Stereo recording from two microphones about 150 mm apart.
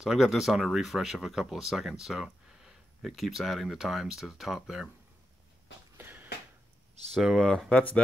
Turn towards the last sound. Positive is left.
turn(degrees=5)  # may be behind; listen again after turning